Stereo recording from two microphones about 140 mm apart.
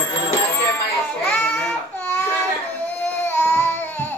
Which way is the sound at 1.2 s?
15° left (ahead or behind).